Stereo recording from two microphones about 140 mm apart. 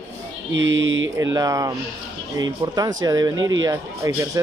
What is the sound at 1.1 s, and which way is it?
Speech, 25° right (ahead or behind).